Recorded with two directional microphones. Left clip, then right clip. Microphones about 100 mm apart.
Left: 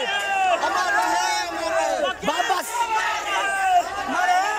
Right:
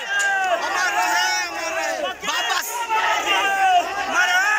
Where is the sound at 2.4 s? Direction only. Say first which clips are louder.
Even; 5° right (ahead or behind).